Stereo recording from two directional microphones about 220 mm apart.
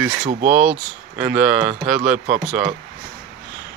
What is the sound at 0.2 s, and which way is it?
Speech, 35° right (ahead or behind).